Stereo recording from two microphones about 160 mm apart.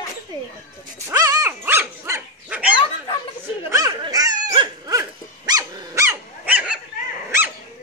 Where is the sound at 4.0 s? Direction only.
25° right (ahead or behind).